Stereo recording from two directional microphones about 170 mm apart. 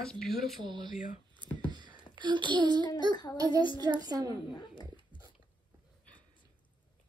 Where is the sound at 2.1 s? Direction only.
25° right (ahead or behind).